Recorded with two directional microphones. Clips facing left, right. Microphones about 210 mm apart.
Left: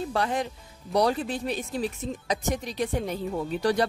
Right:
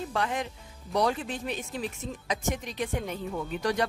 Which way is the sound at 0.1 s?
35° left (ahead or behind).